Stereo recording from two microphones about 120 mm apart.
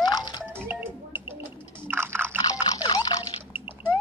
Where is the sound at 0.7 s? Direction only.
10° right (ahead or behind).